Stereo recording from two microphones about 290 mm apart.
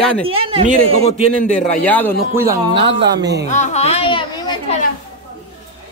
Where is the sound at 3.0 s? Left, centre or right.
Right.